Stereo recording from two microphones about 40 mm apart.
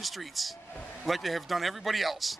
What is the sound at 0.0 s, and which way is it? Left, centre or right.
Speech, centre.